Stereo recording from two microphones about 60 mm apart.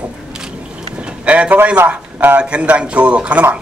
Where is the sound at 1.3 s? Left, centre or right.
Right.